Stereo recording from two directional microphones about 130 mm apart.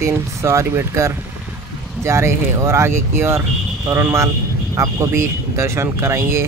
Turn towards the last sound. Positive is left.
turn(degrees=-20)  # may be behind; listen again after turning